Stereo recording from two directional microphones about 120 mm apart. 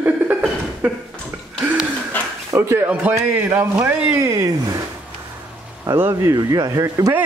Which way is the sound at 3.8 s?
25° right (ahead or behind).